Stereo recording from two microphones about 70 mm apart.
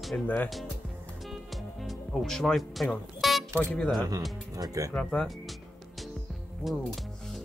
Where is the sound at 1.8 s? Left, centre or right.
Centre.